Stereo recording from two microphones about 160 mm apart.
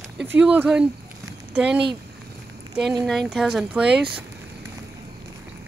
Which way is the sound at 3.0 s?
Centre (ahead or behind).